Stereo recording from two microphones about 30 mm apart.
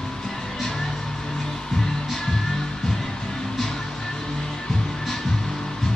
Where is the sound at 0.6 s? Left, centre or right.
Centre.